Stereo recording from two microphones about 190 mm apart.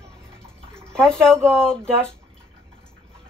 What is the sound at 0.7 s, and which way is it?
Speech, 5° left (ahead or behind).